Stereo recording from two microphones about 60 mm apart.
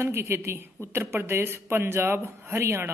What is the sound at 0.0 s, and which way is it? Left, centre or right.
A man's voice, right.